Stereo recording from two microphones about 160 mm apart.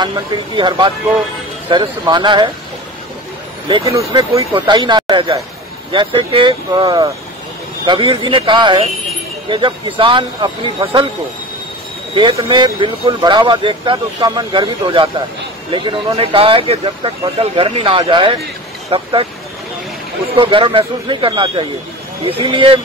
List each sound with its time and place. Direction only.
0.0 s speech: 30° right (ahead or behind)
3.6 s speech: 30° right (ahead or behind)
12.2 s speech: 30° right (ahead or behind)
20.3 s speech: 35° right (ahead or behind)